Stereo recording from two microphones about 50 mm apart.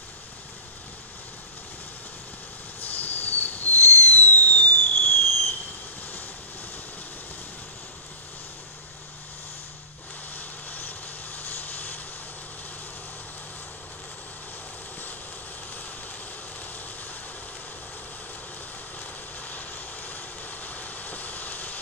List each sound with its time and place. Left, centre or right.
2.8 s fireworks: left
10.3 s vehicle: left
16.7 s vehicle: left
18.9 s vehicle: left